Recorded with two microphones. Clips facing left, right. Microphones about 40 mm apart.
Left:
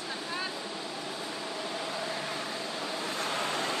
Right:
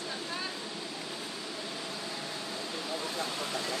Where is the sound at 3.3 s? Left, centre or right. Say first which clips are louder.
Left 4 dB; left.